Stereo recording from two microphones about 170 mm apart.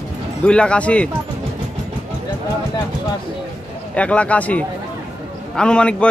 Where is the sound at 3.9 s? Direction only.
5° left (ahead or behind).